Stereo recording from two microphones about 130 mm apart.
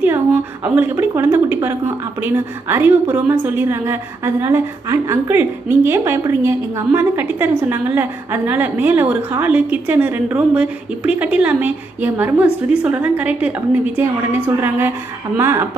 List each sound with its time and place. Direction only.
0.7 s a woman's voice: 20° right (ahead or behind)